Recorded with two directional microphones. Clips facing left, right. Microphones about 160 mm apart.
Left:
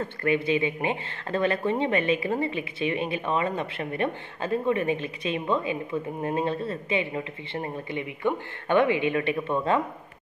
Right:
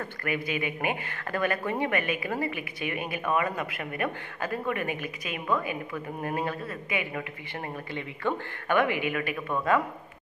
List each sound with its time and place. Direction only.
0.0 s speech: 25° left (ahead or behind)